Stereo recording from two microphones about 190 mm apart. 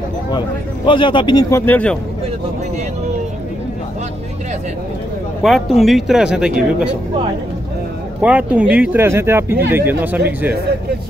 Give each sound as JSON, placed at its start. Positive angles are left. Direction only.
{"t": 0.8, "sound": "a man's voice", "side_deg": 25}
{"t": 1.7, "sound": "speech", "side_deg": 5}
{"t": 5.4, "sound": "speech", "side_deg": 0}
{"t": 8.2, "sound": "speech", "side_deg": -10}